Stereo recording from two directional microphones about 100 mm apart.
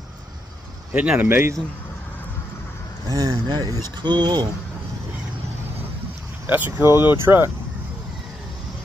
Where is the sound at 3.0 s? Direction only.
35° right (ahead or behind).